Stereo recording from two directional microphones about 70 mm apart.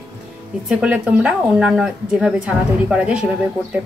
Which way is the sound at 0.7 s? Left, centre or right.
Centre.